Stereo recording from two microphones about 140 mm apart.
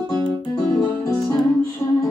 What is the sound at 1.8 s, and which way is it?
Music, 20° left (ahead or behind).